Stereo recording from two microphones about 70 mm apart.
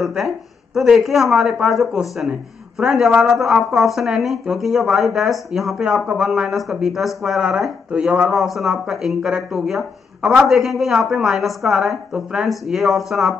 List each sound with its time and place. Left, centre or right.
0.0 s a man's voice: centre
8.3 s speech: centre